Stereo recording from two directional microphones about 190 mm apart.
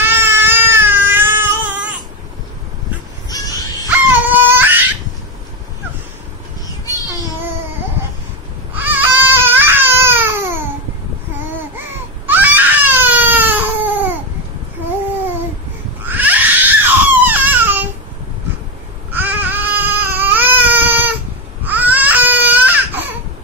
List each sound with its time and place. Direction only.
0.0 s cat: 10° right (ahead or behind)
3.3 s a sound: 20° left (ahead or behind)
4.3 s crying: 10° right (ahead or behind)
8.7 s baby cry: 10° right (ahead or behind)
12.3 s baby cry: 10° right (ahead or behind)
16.1 s crying: 10° right (ahead or behind)
19.1 s baby cry: 10° right (ahead or behind)